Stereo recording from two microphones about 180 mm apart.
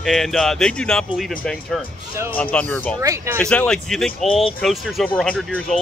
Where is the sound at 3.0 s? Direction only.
15° right (ahead or behind).